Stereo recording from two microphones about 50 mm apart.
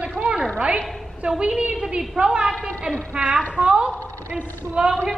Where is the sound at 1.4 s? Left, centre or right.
Centre.